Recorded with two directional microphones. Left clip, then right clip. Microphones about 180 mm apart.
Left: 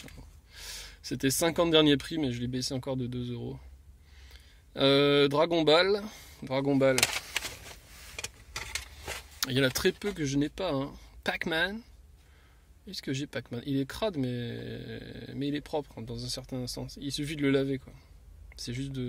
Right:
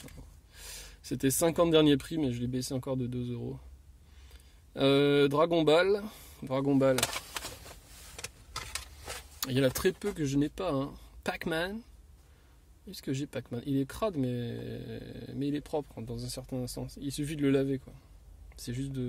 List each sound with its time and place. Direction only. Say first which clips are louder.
0.5 s speech: left 5 dB; 5° right (ahead or behind)
8.2 s vehicle: left 3 dB; 35° left (ahead or behind)
9.4 s speech: left 1 dB; centre (ahead or behind)
12.8 s speech: left 1 dB; 5° right (ahead or behind)